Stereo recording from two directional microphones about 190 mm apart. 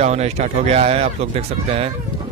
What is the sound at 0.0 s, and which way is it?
Speech, 35° right (ahead or behind).